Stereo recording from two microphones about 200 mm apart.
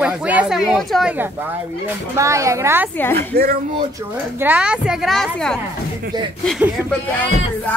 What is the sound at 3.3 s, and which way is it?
Speech, 50° right (ahead or behind).